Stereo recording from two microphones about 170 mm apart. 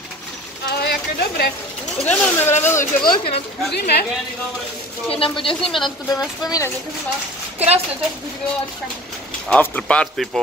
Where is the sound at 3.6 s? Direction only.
70° left (ahead or behind).